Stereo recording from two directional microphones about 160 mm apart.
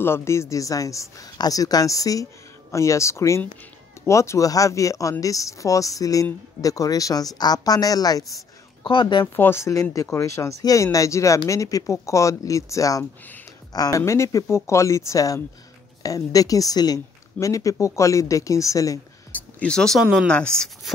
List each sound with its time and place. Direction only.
0.0 s speech: 15° left (ahead or behind); by 9.2 s 30° left (ahead or behind)
9.2 s speech: 15° left (ahead or behind)
19.6 s speech: 5° left (ahead or behind)